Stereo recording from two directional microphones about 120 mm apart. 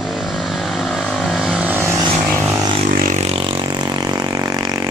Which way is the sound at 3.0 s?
75° right (ahead or behind).